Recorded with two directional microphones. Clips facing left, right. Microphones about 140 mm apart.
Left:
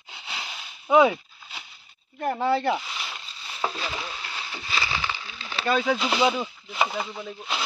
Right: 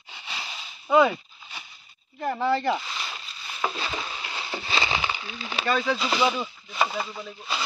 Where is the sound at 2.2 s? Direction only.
10° left (ahead or behind).